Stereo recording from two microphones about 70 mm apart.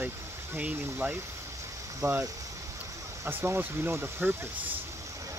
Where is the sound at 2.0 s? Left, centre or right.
Right.